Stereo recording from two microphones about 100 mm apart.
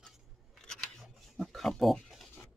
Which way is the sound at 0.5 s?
5° left (ahead or behind).